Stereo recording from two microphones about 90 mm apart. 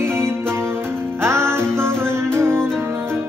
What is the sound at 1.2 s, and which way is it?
Music, 30° right (ahead or behind).